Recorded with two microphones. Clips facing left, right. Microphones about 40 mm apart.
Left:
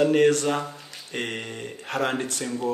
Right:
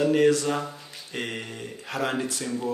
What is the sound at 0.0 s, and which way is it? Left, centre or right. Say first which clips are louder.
Speech: left 1 dB; left.